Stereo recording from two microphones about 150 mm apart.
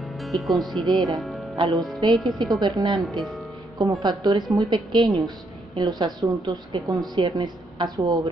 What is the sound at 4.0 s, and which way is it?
A woman's voice, 30° right (ahead or behind).